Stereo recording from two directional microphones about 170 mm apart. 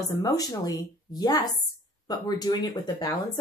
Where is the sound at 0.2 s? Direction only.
20° left (ahead or behind).